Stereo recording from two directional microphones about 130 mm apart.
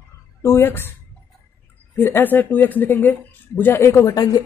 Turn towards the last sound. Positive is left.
turn(degrees=30)  # may be behind; listen again after turning